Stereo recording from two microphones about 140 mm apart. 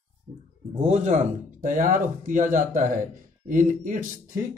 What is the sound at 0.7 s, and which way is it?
Speech, 50° right (ahead or behind).